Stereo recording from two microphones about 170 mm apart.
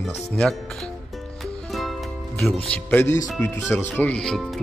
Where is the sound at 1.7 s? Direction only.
Centre (ahead or behind).